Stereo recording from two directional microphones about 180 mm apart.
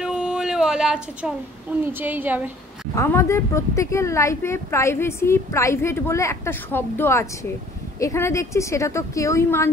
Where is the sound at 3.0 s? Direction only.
15° left (ahead or behind).